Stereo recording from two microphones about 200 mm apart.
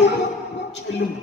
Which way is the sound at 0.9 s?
60° left (ahead or behind).